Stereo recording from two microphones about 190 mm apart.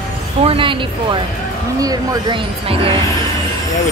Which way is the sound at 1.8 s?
20° right (ahead or behind).